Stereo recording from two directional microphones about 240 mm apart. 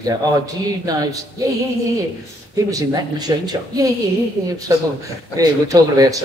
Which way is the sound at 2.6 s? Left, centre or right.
Centre.